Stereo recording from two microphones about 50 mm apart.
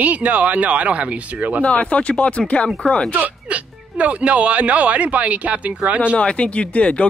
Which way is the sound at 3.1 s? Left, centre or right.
Right.